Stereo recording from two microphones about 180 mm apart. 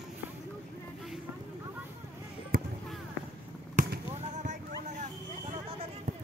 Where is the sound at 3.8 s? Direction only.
45° right (ahead or behind).